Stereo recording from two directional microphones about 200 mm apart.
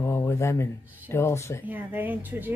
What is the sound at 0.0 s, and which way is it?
Speech, 15° left (ahead or behind).